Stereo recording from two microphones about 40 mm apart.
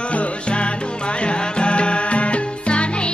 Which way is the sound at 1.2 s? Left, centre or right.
Left.